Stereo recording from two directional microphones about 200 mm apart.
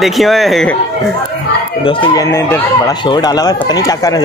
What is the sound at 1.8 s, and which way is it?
Speech, 25° left (ahead or behind).